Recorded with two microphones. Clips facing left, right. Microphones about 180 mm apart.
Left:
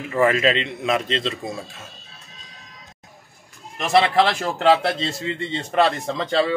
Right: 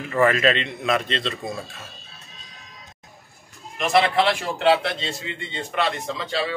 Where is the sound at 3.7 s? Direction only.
40° left (ahead or behind).